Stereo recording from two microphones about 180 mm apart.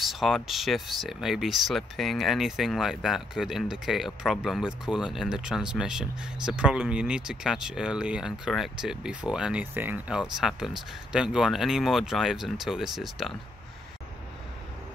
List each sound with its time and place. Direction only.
0.0 s speech: centre (ahead or behind)